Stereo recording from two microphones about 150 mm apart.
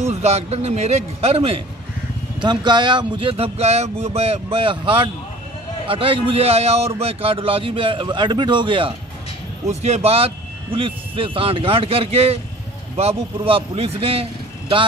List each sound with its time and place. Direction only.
0.0 s a man's voice: 45° right (ahead or behind)
2.4 s a man's voice: 30° right (ahead or behind)
9.7 s a man's voice: 45° right (ahead or behind)